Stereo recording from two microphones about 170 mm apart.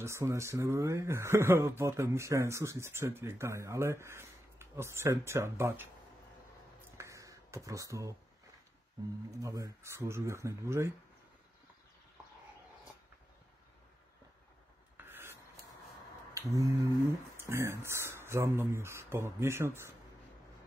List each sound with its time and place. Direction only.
0.0 s speech: 15° right (ahead or behind)
7.0 s finger snapping: 20° right (ahead or behind)
9.4 s speech: 20° right (ahead or behind)
15.0 s a sound: 15° right (ahead or behind)
16.3 s a sound: 20° right (ahead or behind)
17.4 s speech: 15° right (ahead or behind)